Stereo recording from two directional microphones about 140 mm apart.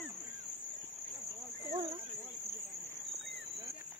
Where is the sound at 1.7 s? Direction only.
45° right (ahead or behind).